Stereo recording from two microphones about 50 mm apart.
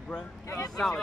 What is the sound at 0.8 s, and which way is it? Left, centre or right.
Speech, centre.